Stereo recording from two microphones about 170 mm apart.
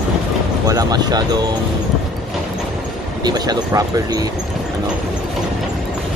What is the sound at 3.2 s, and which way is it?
Speech, 25° right (ahead or behind).